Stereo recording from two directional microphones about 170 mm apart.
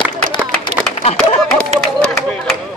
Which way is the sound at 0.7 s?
40° right (ahead or behind).